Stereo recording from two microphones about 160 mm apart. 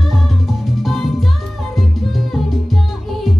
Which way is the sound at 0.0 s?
Centre (ahead or behind).